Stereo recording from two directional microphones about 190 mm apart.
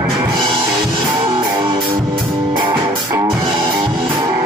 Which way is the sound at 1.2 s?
25° right (ahead or behind).